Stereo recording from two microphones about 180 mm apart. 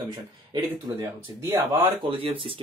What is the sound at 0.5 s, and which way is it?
Speech, 20° right (ahead or behind).